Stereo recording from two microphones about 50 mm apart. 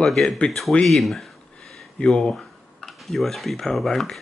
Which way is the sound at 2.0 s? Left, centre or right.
Centre.